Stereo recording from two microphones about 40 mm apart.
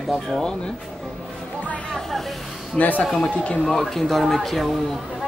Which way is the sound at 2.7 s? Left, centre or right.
Left.